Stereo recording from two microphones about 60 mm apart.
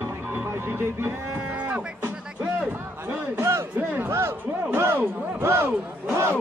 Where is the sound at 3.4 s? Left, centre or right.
Right.